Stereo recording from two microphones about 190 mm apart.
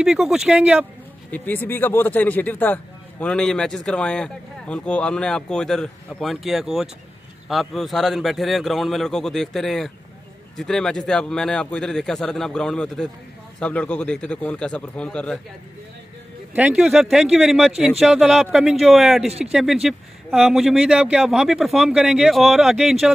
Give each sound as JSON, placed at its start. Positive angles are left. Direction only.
{"t": 0.0, "sound": "a man's voice", "side_deg": -5}
{"t": 1.3, "sound": "a man's voice", "side_deg": 10}
{"t": 16.5, "sound": "a man's voice", "side_deg": -5}